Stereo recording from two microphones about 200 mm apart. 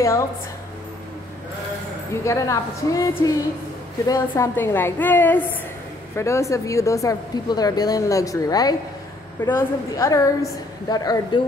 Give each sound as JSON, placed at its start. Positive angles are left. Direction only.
{"t": 0.0, "sound": "a woman's voice", "side_deg": 15}
{"t": 2.2, "sound": "a woman's voice", "side_deg": 15}